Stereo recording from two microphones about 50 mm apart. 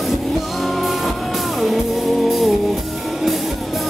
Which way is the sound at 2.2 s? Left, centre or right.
Centre.